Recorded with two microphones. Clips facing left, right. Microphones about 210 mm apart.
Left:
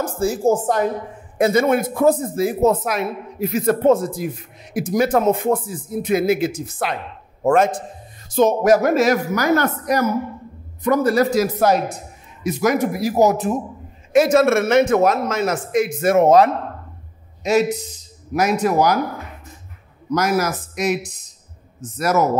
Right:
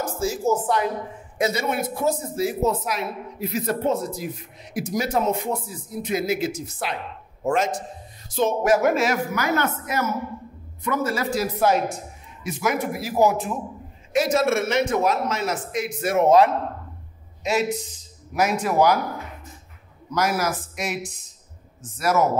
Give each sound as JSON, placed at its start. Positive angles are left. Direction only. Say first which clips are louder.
{"t": 0.2, "sound": "a man's voice", "louder": "left 5 dB", "side_deg": 55}
{"t": 8.4, "sound": "speech", "louder": "left 5 dB", "side_deg": 40}
{"t": 14.1, "sound": "speech", "louder": "left 6 dB", "side_deg": 50}
{"t": 20.1, "sound": "speech", "louder": "left 4 dB", "side_deg": 40}